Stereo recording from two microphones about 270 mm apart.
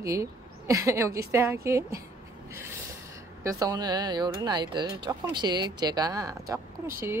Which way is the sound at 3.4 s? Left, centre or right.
Centre.